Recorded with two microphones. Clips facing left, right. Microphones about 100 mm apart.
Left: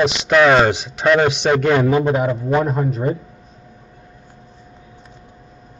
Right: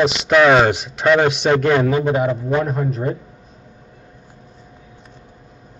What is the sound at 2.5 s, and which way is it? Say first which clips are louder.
Speech: left 2 dB; 20° left (ahead or behind).